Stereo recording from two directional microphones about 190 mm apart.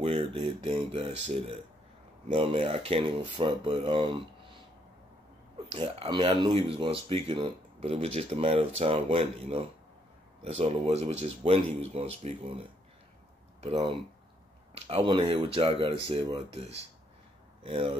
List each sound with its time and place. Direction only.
0.0 s speech: 30° right (ahead or behind)
5.6 s speech: 30° right (ahead or behind)
13.6 s speech: 30° right (ahead or behind)